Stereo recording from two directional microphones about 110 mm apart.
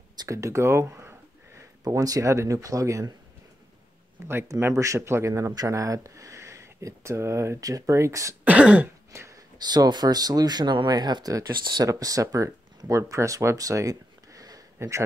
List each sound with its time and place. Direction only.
0.1 s speech: 35° right (ahead or behind)
4.3 s speech: 20° right (ahead or behind)
8.5 s throat clearing: 10° right (ahead or behind)
9.1 s a sound: 25° right (ahead or behind)
9.6 s speech: 40° right (ahead or behind)